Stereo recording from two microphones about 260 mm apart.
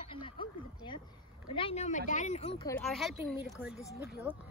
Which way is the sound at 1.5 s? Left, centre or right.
Left.